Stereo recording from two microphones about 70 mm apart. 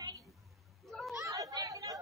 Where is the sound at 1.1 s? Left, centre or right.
Right.